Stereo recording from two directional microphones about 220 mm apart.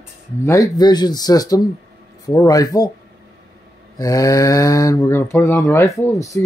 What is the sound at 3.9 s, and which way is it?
Speech, 15° left (ahead or behind).